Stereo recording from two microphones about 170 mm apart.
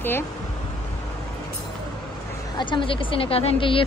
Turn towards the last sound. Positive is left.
turn(degrees=35)  # may be behind; listen again after turning